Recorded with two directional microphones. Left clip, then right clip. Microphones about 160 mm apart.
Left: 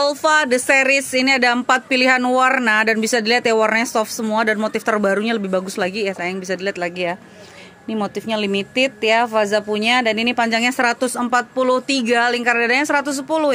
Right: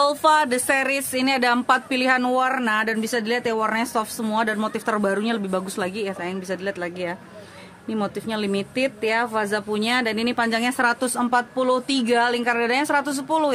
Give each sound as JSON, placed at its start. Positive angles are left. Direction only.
{"t": 0.0, "sound": "speech", "side_deg": 10}